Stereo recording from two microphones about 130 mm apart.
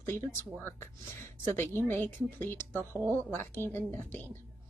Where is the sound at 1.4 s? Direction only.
15° left (ahead or behind).